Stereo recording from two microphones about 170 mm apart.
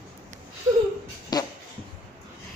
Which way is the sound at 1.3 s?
25° left (ahead or behind).